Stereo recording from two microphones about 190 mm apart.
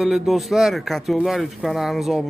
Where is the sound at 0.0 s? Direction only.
Centre (ahead or behind).